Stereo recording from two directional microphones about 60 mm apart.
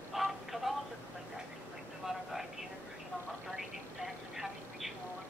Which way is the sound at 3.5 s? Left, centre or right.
Centre.